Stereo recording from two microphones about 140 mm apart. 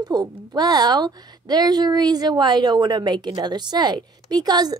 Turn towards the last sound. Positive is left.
turn(degrees=-30)  # may be behind; listen again after turning